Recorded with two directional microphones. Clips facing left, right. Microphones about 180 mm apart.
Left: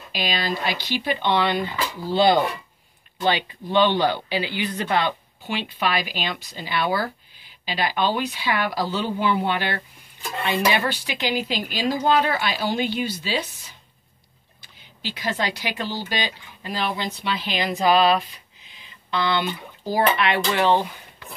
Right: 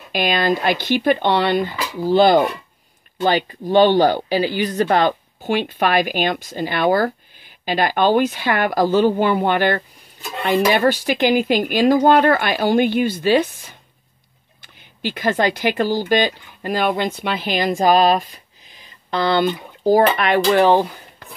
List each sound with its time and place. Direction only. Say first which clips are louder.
0.1 s speech: right 8 dB; 55° right (ahead or behind)